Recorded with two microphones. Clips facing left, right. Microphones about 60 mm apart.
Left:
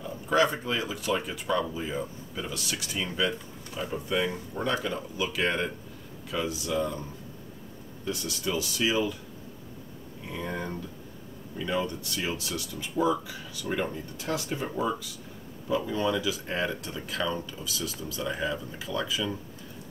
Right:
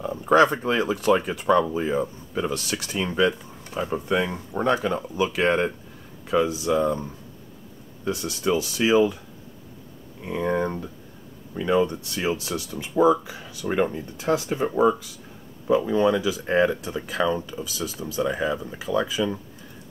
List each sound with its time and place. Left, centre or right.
0.0 s speech: right
8.0 s speech: right
10.2 s speech: right
16.8 s speech: right